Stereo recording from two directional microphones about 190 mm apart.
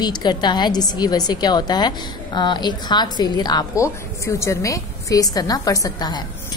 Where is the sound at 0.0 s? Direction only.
25° left (ahead or behind).